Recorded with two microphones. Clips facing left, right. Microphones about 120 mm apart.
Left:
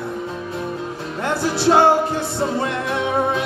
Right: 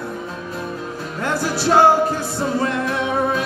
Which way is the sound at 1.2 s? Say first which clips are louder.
Left 2 dB; 25° left (ahead or behind).